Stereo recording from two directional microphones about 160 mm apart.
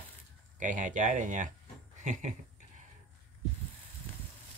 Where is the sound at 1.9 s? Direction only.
50° right (ahead or behind).